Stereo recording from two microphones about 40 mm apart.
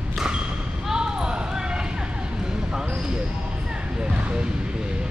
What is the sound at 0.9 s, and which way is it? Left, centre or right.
Basketball bounce, centre.